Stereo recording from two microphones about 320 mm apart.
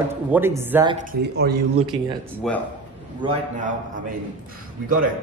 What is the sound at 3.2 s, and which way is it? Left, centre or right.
Speech, centre.